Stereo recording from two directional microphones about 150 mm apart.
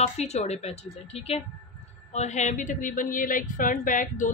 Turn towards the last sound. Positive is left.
turn(degrees=60)  # may be behind; listen again after turning